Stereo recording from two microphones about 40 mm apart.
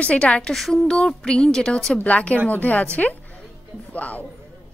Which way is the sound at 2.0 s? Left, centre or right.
Left.